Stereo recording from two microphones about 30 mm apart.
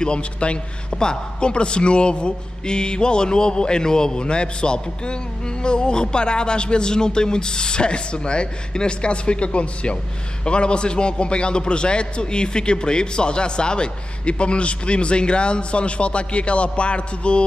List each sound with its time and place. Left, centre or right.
0.0 s speech: left